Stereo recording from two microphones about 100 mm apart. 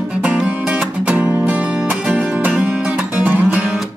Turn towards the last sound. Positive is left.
turn(degrees=-15)  # may be behind; listen again after turning